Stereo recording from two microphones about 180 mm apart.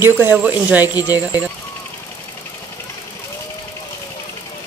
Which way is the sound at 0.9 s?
20° left (ahead or behind).